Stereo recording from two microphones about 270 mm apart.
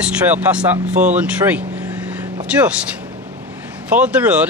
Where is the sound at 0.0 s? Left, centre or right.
Centre.